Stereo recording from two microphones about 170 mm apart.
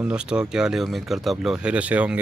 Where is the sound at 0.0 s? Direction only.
5° right (ahead or behind).